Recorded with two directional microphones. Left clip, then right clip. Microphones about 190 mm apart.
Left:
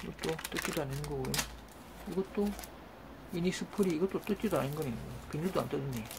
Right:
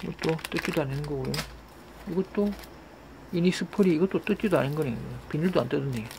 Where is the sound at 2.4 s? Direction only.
40° right (ahead or behind).